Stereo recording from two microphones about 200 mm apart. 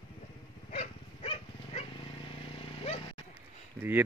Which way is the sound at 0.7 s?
30° left (ahead or behind).